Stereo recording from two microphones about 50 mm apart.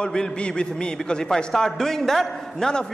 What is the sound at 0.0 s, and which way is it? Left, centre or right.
A man's voice, centre.